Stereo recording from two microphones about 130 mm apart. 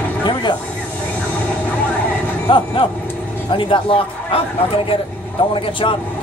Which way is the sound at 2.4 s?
40° left (ahead or behind).